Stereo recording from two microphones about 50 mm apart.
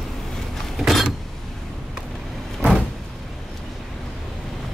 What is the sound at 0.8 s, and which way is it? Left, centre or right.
Power windows, centre.